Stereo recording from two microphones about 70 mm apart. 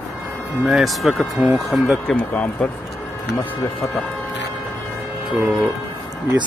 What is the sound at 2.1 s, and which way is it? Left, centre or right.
Speech, left.